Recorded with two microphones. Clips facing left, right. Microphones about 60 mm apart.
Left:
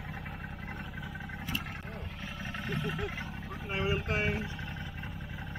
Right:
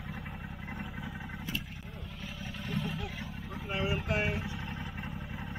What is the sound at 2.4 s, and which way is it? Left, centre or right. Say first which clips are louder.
Vehicle: left 1 dB; centre.